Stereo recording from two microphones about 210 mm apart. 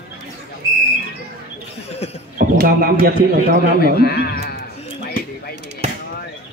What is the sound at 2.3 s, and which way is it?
Speech, 45° right (ahead or behind).